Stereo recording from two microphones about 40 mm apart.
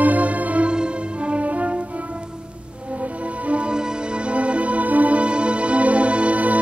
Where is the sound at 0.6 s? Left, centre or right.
Right.